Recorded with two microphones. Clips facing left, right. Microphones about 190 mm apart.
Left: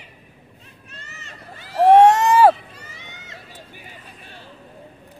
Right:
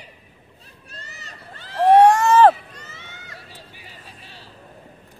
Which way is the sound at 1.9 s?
20° left (ahead or behind).